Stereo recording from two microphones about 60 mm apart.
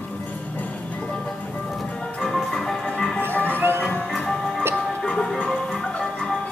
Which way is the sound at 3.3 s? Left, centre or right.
Left.